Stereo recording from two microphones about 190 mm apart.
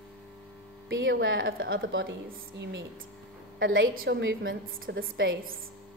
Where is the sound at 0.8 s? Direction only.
85° right.